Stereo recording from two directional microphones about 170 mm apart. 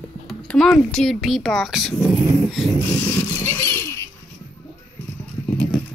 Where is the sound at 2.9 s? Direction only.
15° left (ahead or behind).